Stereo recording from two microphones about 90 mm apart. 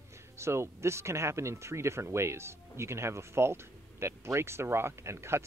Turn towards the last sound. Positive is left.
turn(degrees=-30)  # may be behind; listen again after turning